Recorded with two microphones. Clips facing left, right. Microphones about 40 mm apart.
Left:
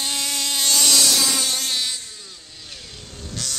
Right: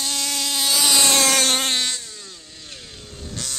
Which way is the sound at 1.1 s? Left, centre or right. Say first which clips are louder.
Right 4 dB; right.